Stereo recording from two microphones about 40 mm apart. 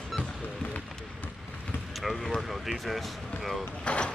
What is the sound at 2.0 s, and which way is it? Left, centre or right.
Speech, centre.